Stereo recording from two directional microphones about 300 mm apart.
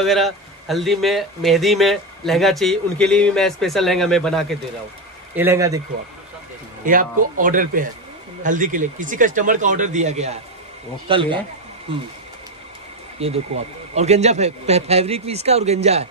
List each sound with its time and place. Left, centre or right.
0.0 s a man's voice: centre
6.8 s a man's voice: right
13.2 s a man's voice: centre